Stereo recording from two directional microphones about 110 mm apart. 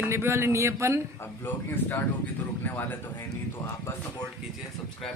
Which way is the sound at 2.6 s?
15° left (ahead or behind).